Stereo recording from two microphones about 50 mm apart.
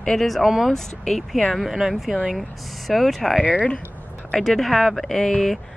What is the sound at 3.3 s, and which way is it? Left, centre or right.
Speech, left.